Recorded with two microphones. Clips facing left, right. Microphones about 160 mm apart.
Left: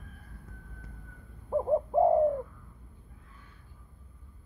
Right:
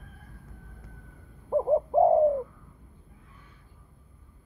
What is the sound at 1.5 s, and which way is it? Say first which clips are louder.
Bird: right 3 dB; 15° right (ahead or behind).